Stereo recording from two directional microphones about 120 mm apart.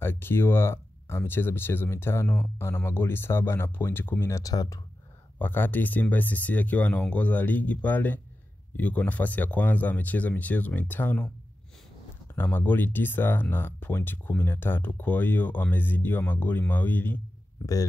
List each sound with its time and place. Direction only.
0.0 s speech: 20° left (ahead or behind)
5.4 s speech: 15° left (ahead or behind)
12.4 s speech: 15° left (ahead or behind)